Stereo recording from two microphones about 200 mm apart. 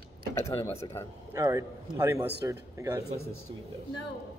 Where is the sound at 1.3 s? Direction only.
15° right (ahead or behind).